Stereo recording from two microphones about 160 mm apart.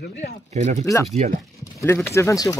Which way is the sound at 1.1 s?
40° right (ahead or behind).